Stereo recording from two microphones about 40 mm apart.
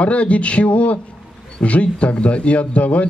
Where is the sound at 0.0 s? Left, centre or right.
Left.